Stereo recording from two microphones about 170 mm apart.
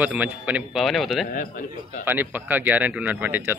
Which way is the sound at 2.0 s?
10° right (ahead or behind).